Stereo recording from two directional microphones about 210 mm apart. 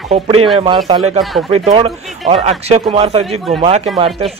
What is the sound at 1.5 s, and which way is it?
Speech, 25° right (ahead or behind).